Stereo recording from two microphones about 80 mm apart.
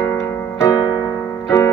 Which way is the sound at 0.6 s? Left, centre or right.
Left.